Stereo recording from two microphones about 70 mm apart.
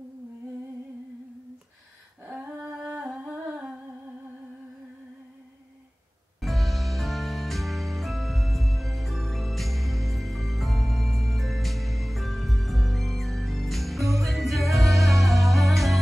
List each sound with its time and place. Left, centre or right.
2.2 s humming: centre
6.4 s music: centre